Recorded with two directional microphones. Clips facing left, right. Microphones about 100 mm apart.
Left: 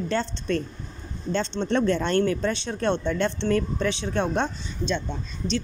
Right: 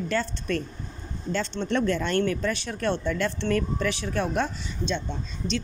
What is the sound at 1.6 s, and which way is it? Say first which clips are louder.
Speech: left 2 dB; 30° left (ahead or behind).